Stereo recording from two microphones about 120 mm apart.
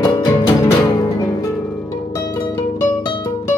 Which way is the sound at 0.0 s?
30° left (ahead or behind).